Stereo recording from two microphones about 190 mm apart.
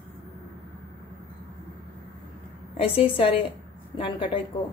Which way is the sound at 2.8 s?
30° left (ahead or behind).